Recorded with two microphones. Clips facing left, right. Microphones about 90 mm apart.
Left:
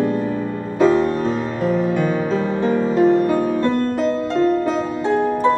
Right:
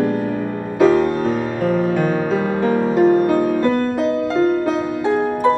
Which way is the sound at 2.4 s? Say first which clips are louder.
Right 1 dB; 55° right (ahead or behind).